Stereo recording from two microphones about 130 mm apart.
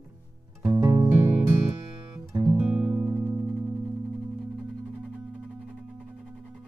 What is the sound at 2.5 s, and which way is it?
Music, 10° right (ahead or behind).